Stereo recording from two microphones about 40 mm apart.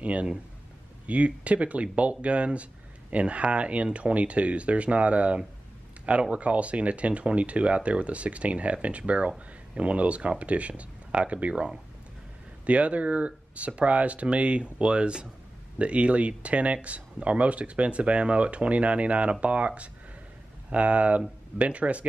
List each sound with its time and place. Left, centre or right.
0.0 s speech: right
12.6 s speech: right